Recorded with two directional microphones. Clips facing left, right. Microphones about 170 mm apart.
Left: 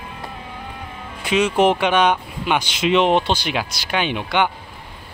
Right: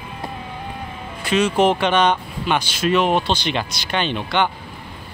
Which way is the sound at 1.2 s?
15° left (ahead or behind).